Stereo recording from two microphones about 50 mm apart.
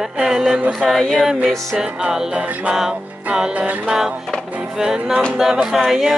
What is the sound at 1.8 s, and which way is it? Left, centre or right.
Music, centre.